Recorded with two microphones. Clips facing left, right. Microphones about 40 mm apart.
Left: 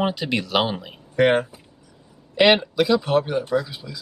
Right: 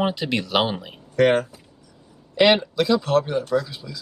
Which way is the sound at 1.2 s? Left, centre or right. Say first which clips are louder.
Even; centre.